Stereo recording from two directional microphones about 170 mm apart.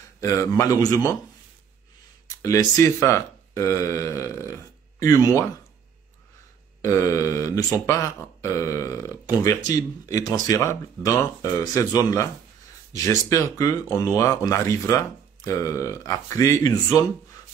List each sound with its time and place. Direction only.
0.2 s speech: 20° left (ahead or behind)
2.2 s speech: 20° left (ahead or behind)
6.8 s speech: 20° left (ahead or behind)